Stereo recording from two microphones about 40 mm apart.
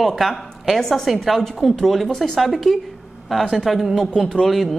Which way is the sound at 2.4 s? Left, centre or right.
Centre.